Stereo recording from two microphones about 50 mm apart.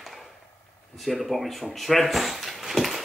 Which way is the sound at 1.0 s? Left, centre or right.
Centre.